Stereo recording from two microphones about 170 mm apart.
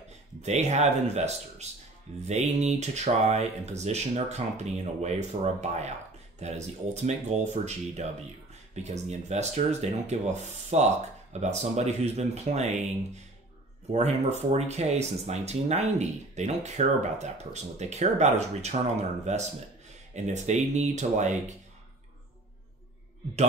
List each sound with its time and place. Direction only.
0.4 s speech: 40° right (ahead or behind)